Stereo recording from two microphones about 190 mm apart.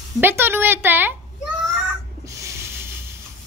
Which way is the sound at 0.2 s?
10° right (ahead or behind).